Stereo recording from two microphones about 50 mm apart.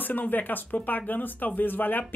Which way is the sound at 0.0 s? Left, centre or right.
Left.